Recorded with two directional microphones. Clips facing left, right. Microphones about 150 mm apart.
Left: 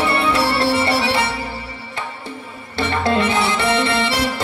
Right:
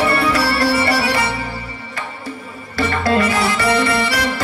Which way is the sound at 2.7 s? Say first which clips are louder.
Right 1 dB; 25° left (ahead or behind).